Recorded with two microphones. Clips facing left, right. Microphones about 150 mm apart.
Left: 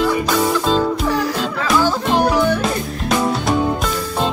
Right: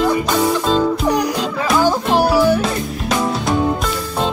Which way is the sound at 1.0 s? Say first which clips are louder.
Right 2 dB; 15° right (ahead or behind).